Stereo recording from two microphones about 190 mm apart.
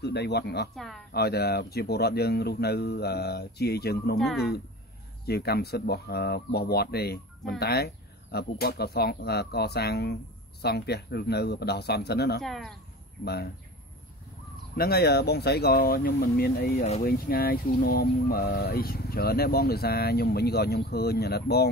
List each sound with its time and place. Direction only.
0.0 s speech: 60° left (ahead or behind)
0.7 s speech: centre (ahead or behind)
1.1 s speech: 55° left (ahead or behind)
5.2 s speech: 55° left (ahead or behind)
12.4 s speech: centre (ahead or behind)
13.2 s speech: 55° left (ahead or behind)
14.8 s speech: 55° left (ahead or behind)